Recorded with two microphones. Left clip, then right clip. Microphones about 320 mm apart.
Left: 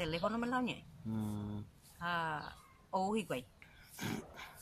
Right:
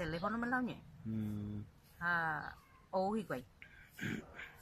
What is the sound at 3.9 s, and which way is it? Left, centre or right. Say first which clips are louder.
Dog: left 1 dB; centre.